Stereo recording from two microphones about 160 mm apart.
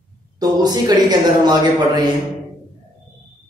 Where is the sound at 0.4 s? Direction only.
25° right (ahead or behind).